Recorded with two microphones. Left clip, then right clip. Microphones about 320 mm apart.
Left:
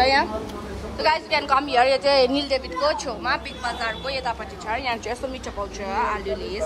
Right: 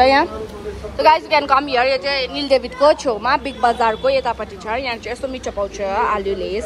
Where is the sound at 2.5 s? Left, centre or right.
Centre.